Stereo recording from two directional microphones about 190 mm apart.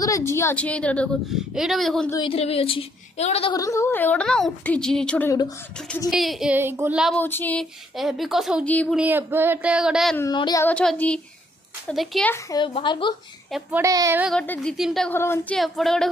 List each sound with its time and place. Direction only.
0.0 s a woman's voice: 15° left (ahead or behind)
2.0 s a woman's voice: 25° left (ahead or behind)
3.5 s a woman's voice: 15° left (ahead or behind)
6.0 s speech: centre (ahead or behind)
7.2 s speech: 10° left (ahead or behind)
10.3 s a woman's voice: 20° left (ahead or behind)
10.7 s speech: 5° left (ahead or behind)
12.3 s a woman's voice: 20° left (ahead or behind)
13.5 s speech: 10° right (ahead or behind)
14.3 s speech: 5° left (ahead or behind)
15.1 s speech: 10° left (ahead or behind)